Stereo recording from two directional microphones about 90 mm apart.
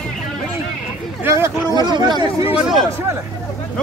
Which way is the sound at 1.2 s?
30° right (ahead or behind).